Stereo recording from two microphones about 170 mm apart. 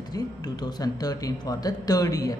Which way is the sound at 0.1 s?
25° left (ahead or behind).